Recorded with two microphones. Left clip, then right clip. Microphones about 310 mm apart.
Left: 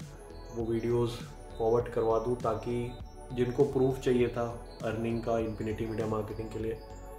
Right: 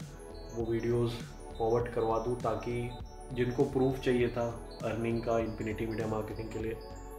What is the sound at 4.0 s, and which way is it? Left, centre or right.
Speech, centre.